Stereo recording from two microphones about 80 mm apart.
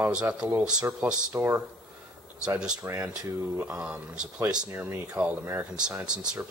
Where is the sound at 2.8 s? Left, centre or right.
Right.